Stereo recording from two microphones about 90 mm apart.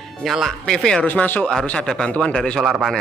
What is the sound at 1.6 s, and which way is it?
Speech, 10° left (ahead or behind).